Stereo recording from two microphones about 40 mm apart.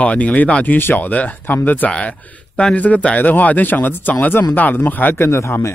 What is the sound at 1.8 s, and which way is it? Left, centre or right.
Speech, left.